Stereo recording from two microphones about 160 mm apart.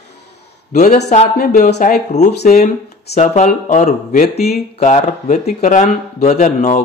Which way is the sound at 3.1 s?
45° left (ahead or behind).